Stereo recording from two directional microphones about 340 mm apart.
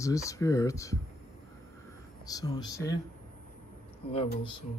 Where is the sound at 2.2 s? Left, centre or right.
Centre.